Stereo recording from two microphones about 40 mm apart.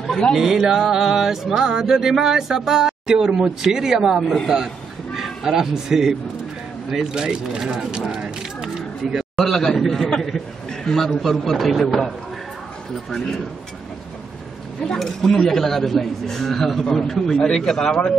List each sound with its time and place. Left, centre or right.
0.4 s music: centre
5.1 s speech: centre
6.9 s music: centre
8.1 s a sound: centre
9.4 s a man's voice: centre
15.0 s a man's voice: centre